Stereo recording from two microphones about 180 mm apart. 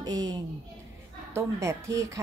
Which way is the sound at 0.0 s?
20° right (ahead or behind).